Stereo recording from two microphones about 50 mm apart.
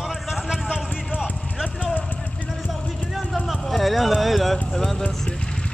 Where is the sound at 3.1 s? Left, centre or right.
Centre.